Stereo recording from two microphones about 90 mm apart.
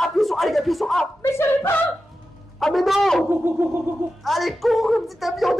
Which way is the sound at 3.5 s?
25° right (ahead or behind).